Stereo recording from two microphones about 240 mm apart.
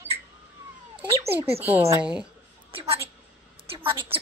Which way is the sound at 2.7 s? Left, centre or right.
Right.